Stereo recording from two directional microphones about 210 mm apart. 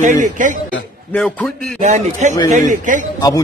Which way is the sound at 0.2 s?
40° right (ahead or behind).